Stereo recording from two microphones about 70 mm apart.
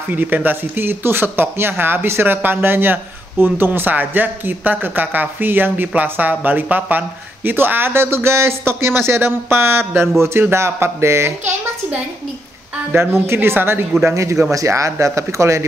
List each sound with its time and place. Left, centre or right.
0.1 s speech: right
12.9 s speech: right
14.0 s speech: right